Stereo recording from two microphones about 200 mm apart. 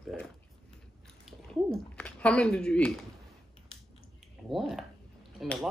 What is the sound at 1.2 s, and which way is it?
Speech, 5° left (ahead or behind).